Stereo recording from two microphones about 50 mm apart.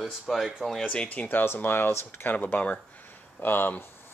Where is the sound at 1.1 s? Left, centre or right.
Left.